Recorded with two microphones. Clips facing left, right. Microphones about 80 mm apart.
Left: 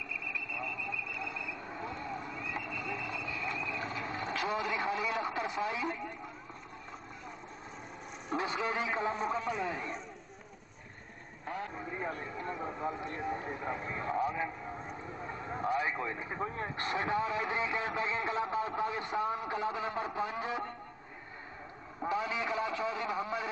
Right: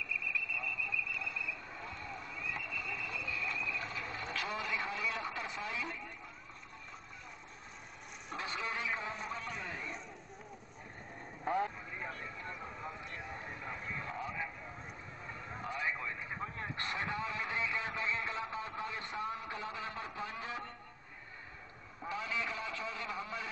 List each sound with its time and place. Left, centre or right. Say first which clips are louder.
0.3 s vehicle: left 1 dB; centre
8.4 s a man's voice: left 6 dB; centre
11.4 s a man's voice: right 5 dB; centre
11.8 s speech: left 6 dB; left
12.5 s speech: left 8 dB; left
13.2 s a man's voice: left 12 dB; centre
13.7 s a man's voice: left 8 dB; centre
15.2 s vehicle: left 8 dB; left
15.7 s a sound: left 5 dB; centre
16.3 s speech: left 5 dB; left
16.6 s speech: left 4 dB; centre
22.1 s speech: left 5 dB; centre